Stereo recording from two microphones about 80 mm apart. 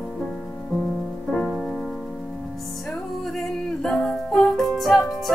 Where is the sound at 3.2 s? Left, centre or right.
Centre.